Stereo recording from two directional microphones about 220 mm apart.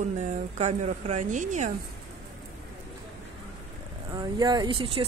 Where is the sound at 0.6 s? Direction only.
30° right (ahead or behind).